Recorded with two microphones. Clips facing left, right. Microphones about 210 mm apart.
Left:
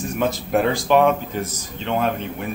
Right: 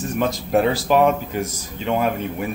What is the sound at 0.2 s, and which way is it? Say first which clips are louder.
Speech: right 1 dB; centre (ahead or behind).